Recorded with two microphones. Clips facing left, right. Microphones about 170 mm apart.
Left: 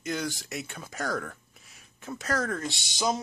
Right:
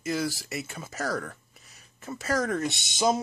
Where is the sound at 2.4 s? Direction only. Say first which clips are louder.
Right 4 dB; 15° right (ahead or behind).